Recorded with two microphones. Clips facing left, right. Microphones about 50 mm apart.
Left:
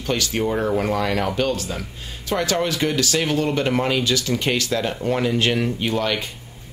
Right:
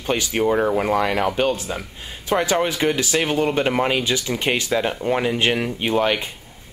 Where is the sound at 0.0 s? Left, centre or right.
Centre.